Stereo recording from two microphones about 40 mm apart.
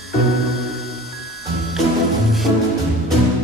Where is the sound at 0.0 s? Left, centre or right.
Centre.